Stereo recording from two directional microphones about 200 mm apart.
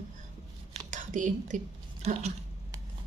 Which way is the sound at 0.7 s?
40° right (ahead or behind).